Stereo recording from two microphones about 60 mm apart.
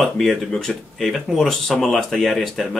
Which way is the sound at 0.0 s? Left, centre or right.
Centre.